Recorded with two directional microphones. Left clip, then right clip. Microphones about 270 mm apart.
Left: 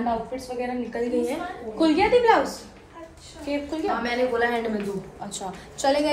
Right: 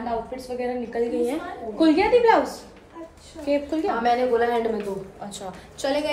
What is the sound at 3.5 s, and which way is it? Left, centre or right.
Speech, centre.